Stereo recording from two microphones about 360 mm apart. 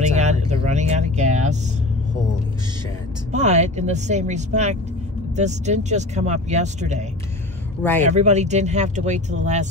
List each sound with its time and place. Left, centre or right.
0.1 s vehicle: centre
3.3 s speech: centre